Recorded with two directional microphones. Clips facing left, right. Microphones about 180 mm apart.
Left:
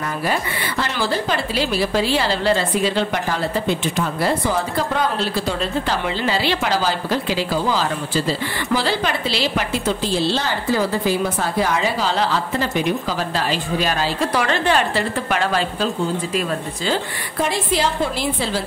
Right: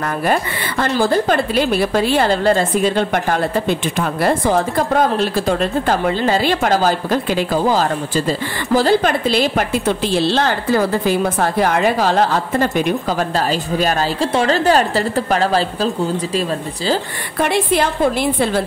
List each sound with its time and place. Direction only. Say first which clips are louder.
0.3 s a woman's voice: right 4 dB; 50° right (ahead or behind)
14.2 s a woman's voice: right 5 dB; 30° right (ahead or behind)
17.4 s a woman's voice: right 4 dB; 60° right (ahead or behind)